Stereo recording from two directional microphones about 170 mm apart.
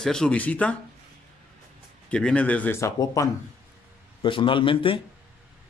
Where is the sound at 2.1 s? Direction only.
5° left (ahead or behind).